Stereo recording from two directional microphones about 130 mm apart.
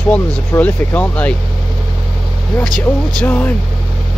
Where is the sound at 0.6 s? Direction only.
15° left (ahead or behind).